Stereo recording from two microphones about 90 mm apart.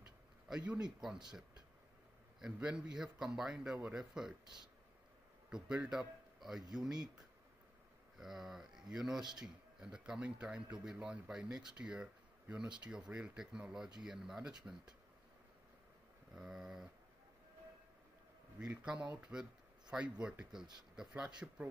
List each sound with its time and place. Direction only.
0.5 s speech: 10° right (ahead or behind)
2.4 s a man's voice: 10° right (ahead or behind)
8.2 s speech: 5° right (ahead or behind)
16.3 s speech: 5° right (ahead or behind)
18.6 s speech: 10° right (ahead or behind)